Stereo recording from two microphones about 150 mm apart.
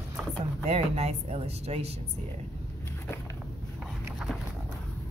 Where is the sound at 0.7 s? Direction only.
45° right (ahead or behind).